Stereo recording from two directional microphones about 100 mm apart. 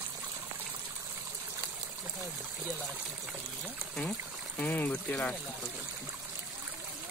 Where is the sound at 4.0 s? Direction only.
20° left (ahead or behind).